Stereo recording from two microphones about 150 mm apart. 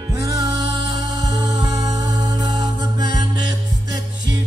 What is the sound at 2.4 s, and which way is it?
Music, 25° right (ahead or behind).